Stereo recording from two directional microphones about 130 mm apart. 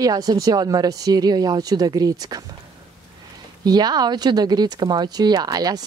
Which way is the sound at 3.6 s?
30° right (ahead or behind).